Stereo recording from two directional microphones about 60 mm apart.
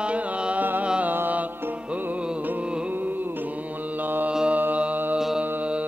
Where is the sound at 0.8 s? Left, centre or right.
Centre.